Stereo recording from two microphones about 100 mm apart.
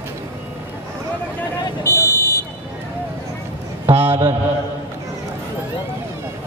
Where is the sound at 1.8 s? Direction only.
25° left (ahead or behind).